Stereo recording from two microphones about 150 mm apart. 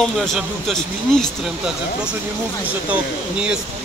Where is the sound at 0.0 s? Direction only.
Centre (ahead or behind).